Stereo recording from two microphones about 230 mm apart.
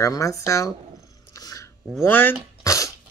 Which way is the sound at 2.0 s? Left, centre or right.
Centre.